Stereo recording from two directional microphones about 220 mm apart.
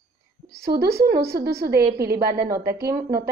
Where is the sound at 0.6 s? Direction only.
45° right (ahead or behind).